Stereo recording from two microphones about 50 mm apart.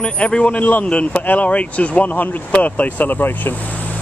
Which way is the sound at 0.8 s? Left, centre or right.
Left.